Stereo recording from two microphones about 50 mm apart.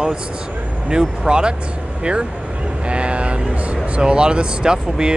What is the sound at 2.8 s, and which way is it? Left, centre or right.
Speech, right.